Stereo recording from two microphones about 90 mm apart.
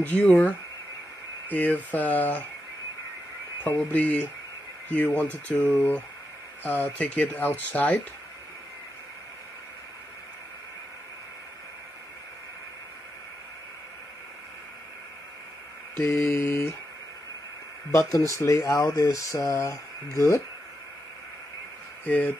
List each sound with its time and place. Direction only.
0.0 s speech: 15° left (ahead or behind)
3.6 s speech: 15° left (ahead or behind)
16.0 s speech: 30° left (ahead or behind)
18.4 s speech: 35° left (ahead or behind)
22.0 s speech: 20° left (ahead or behind)